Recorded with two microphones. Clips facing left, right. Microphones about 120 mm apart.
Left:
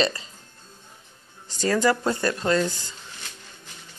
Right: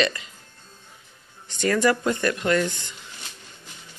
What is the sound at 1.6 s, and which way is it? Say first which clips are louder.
Speech: right 1 dB; 30° left (ahead or behind).